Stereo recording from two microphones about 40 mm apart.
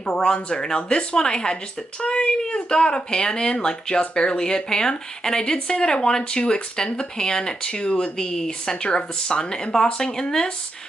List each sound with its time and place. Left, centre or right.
0.0 s speech: left